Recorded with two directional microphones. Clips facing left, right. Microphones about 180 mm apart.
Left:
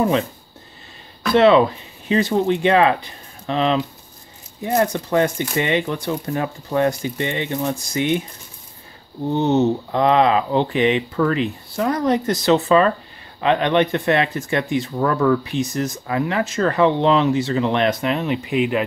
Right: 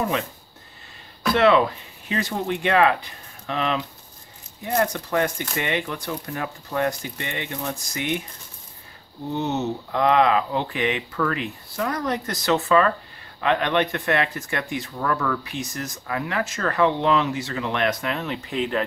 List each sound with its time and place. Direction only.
1.3 s speech: 25° left (ahead or behind)
9.3 s speech: 30° left (ahead or behind); by 18.9 s 10° left (ahead or behind)